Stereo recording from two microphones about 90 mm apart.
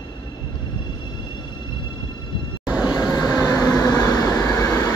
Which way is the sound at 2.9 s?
40° left (ahead or behind).